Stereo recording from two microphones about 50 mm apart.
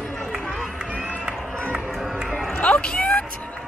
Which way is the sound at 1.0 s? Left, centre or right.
Right.